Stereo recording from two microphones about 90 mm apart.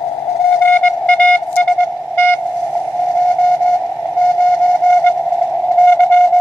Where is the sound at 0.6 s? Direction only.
20° left (ahead or behind).